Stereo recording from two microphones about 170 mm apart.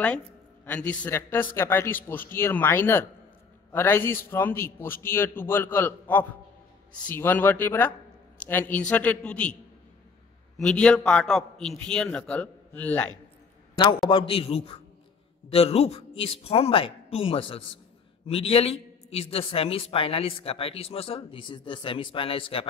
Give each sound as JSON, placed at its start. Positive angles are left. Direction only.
{"t": 0.7, "sound": "a man's voice", "side_deg": 10}
{"t": 10.6, "sound": "a man's voice", "side_deg": 5}
{"t": 13.7, "sound": "a man's voice", "side_deg": 25}